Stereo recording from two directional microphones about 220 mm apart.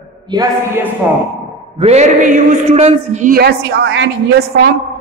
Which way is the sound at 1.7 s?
30° right (ahead or behind).